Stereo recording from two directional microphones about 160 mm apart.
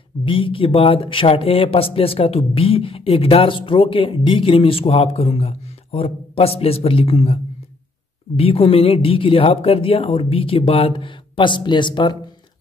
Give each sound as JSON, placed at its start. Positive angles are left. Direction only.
{"t": 0.2, "sound": "speech", "side_deg": 35}
{"t": 8.4, "sound": "speech", "side_deg": 40}